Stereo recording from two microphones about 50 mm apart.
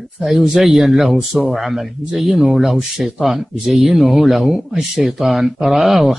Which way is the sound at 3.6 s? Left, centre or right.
Centre.